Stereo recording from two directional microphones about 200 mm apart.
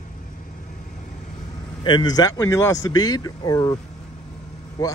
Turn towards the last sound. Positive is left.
turn(degrees=20)  # may be behind; listen again after turning